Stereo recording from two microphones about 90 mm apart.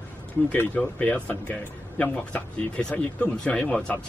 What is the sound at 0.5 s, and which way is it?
Speech, 15° left (ahead or behind).